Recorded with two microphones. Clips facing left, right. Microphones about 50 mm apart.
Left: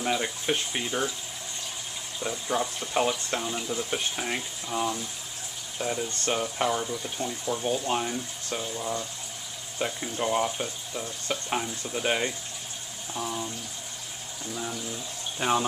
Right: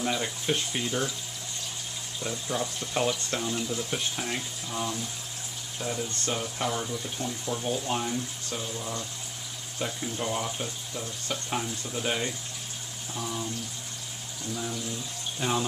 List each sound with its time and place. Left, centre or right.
0.0 s speech: centre
2.1 s speech: centre
14.5 s speech: centre
15.3 s speech: left